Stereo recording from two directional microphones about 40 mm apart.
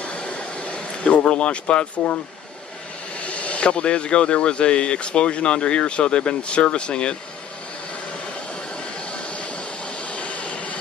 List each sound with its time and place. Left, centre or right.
0.3 s a sound: left
3.2 s speech: left
8.5 s vehicle: left